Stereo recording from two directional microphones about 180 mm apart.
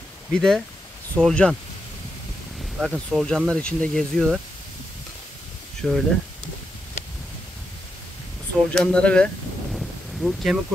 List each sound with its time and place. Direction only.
0.3 s speech: 5° left (ahead or behind)
2.8 s speech: centre (ahead or behind)
5.8 s speech: centre (ahead or behind)
8.6 s speech: 5° left (ahead or behind)
9.8 s a sound: centre (ahead or behind)